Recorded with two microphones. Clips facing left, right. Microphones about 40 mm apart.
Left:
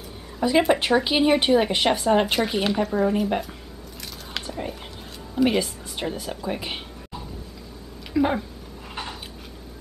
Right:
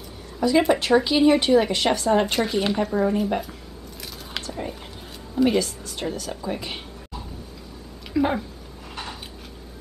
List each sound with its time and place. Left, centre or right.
0.4 s a woman's voice: centre
2.3 s speech: centre
4.3 s a sound: centre
5.3 s speech: centre
8.1 s speech: centre